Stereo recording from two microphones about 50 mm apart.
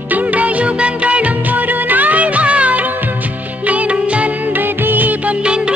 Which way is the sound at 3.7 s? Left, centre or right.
Right.